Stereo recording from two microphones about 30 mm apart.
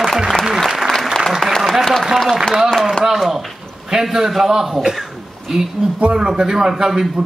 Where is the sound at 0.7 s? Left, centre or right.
Centre.